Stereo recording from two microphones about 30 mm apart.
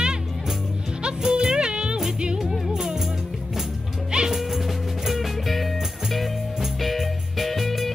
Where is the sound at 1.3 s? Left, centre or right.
Right.